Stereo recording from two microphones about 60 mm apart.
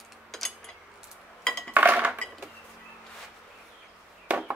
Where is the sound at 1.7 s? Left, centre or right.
Right.